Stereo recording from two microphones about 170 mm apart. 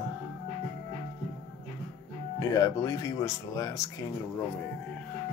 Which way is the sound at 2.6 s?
20° left (ahead or behind).